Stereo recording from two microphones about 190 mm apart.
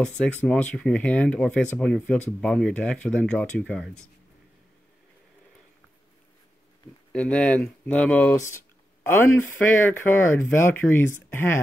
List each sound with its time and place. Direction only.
0.2 s speech: 10° left (ahead or behind)
7.1 s speech: 5° left (ahead or behind)